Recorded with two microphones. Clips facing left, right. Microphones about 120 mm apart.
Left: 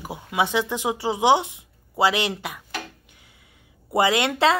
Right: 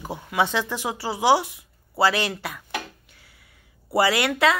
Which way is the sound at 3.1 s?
20° left (ahead or behind).